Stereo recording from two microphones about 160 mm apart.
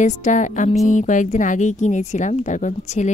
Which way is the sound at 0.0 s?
50° left (ahead or behind).